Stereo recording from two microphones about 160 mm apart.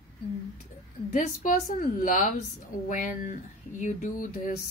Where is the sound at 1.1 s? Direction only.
55° left (ahead or behind).